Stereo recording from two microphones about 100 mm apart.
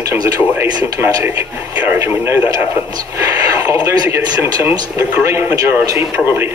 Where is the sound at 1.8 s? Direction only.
25° right (ahead or behind).